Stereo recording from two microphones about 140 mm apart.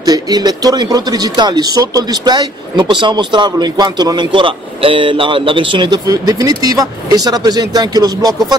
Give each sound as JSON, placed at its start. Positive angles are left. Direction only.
{"t": 0.0, "sound": "speech", "side_deg": -30}